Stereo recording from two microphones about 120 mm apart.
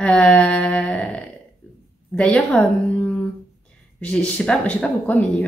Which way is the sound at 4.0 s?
10° left (ahead or behind).